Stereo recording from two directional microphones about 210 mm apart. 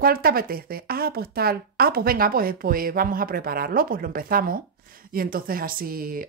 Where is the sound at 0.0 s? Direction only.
45° right (ahead or behind).